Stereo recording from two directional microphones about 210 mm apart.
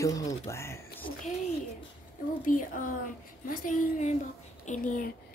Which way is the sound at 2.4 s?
40° left (ahead or behind).